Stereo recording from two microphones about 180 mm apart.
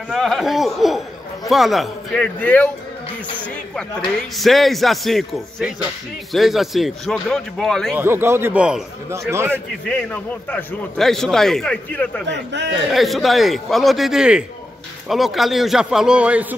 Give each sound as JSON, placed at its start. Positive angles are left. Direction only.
{"t": 0.1, "sound": "a man's voice", "side_deg": 0}
{"t": 4.4, "sound": "a man's voice", "side_deg": 0}
{"t": 8.0, "sound": "speech", "side_deg": -10}
{"t": 9.5, "sound": "a man's voice", "side_deg": 5}
{"t": 12.3, "sound": "a man's voice", "side_deg": -75}
{"t": 12.9, "sound": "a man's voice", "side_deg": 0}